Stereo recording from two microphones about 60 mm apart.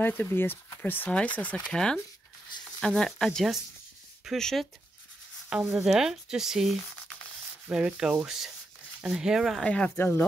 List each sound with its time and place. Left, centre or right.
0.0 s speech: left
1.1 s speech: left
1.7 s speech: centre
4.4 s speech: centre
5.5 s speech: centre
9.7 s speech: centre
9.9 s speech: left